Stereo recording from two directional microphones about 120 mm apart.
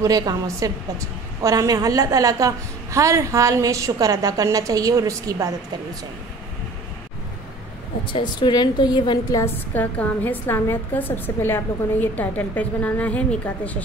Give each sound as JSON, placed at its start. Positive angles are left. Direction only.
{"t": 0.0, "sound": "a woman's voice", "side_deg": -30}
{"t": 8.1, "sound": "a woman's voice", "side_deg": 40}
{"t": 9.4, "sound": "a woman's voice", "side_deg": 15}